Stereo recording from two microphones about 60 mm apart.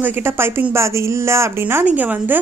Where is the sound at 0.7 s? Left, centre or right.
Right.